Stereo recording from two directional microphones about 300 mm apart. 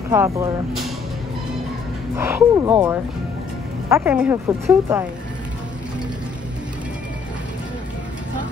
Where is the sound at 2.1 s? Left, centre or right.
Centre.